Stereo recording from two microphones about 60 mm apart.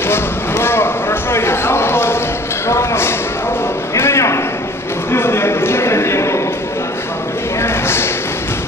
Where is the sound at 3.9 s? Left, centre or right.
Left.